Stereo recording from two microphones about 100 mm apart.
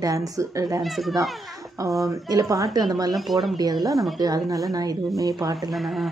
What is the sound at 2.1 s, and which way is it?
Speech, 35° right (ahead or behind).